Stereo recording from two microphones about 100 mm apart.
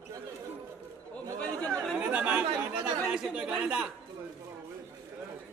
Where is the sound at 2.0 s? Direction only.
15° right (ahead or behind).